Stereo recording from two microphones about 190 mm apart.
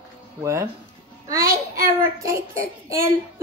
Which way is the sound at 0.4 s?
15° right (ahead or behind).